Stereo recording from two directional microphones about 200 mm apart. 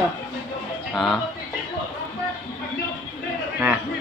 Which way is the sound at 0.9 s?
Centre (ahead or behind).